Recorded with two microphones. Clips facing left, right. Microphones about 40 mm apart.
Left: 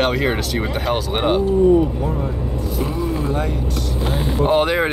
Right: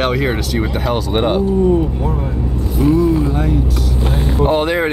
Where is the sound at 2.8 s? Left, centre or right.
Centre.